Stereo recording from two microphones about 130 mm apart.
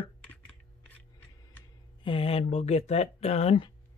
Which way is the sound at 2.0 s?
45° left (ahead or behind).